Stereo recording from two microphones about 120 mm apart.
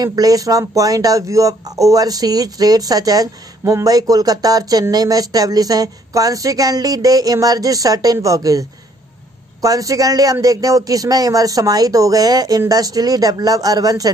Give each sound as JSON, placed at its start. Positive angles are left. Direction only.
{"t": 0.0, "sound": "speech", "side_deg": -30}